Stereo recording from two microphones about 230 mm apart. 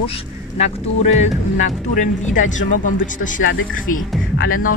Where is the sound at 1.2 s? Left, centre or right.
Left.